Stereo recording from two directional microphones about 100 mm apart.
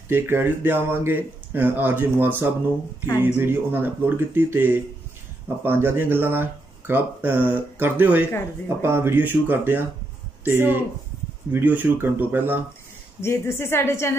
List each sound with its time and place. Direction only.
0.1 s speech: 20° right (ahead or behind)
13.2 s a woman's voice: 25° left (ahead or behind)